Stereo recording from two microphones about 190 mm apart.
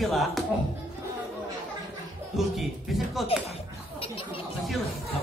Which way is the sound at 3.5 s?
30° left (ahead or behind).